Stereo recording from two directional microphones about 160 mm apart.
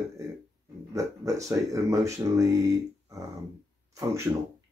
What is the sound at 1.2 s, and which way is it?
Speech, 20° right (ahead or behind).